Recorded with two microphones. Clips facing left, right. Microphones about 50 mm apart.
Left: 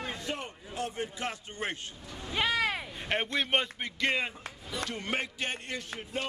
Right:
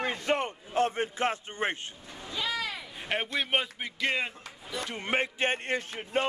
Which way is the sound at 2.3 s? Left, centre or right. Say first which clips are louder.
Left 4 dB; left.